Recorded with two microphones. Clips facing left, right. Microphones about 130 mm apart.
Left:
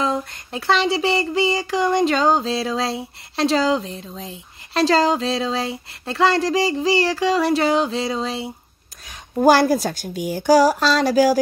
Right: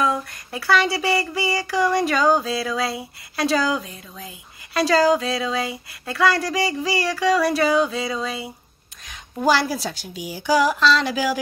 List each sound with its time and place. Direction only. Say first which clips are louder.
0.0 s child singing: even; 25° left (ahead or behind)
9.4 s a woman's voice: left 6 dB; 45° left (ahead or behind)